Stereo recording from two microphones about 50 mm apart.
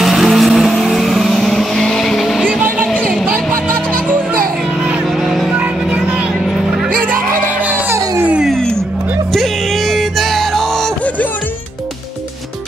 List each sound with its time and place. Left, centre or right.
0.0 s vehicle: centre
5.5 s music: right
9.3 s music: centre